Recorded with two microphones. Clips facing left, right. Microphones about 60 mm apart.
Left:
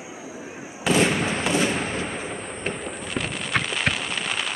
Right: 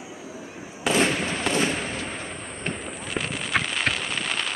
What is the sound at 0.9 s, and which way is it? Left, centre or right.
Fireworks, centre.